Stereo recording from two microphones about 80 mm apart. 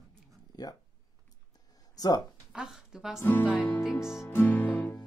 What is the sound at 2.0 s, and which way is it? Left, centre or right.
Speech, left.